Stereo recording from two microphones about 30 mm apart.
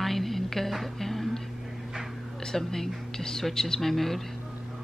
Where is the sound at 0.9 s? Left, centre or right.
Centre.